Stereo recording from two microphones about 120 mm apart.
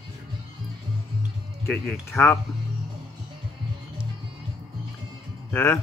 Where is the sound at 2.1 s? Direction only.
20° left (ahead or behind).